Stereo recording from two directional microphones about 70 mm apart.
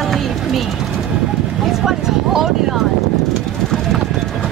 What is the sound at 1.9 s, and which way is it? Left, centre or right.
Speech, centre.